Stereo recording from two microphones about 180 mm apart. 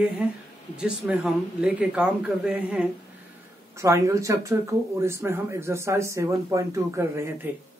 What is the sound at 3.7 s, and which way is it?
Speech, 15° right (ahead or behind).